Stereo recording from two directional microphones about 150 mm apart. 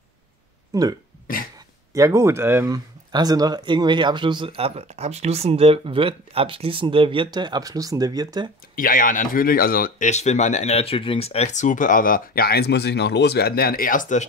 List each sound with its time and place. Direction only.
0.7 s speech: 25° right (ahead or behind)
1.2 s cough: 70° left (ahead or behind)
2.0 s speech: 20° right (ahead or behind)
8.7 s speech: 65° left (ahead or behind)